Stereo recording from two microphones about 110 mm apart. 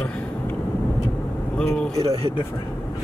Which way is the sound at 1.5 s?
5° left (ahead or behind).